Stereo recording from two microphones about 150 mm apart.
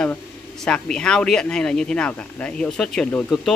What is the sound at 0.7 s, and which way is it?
Speech, 5° left (ahead or behind).